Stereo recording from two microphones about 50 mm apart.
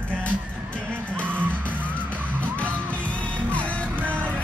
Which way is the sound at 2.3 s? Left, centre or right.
Left.